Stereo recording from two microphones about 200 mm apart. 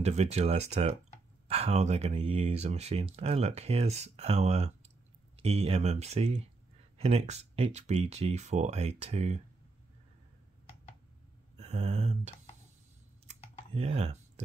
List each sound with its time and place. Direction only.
0.0 s speech: 35° right (ahead or behind)
11.5 s a sound: 30° right (ahead or behind)
13.7 s speech: 30° right (ahead or behind)